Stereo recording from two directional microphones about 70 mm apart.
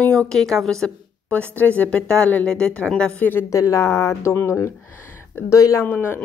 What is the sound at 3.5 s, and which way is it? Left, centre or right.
Speech, left.